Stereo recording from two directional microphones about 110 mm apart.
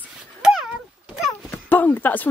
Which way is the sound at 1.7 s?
15° left (ahead or behind).